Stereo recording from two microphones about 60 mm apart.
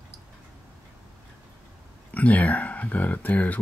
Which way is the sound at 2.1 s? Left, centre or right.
Left.